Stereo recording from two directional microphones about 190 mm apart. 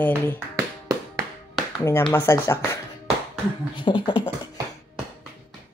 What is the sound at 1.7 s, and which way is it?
A woman's voice, 15° left (ahead or behind).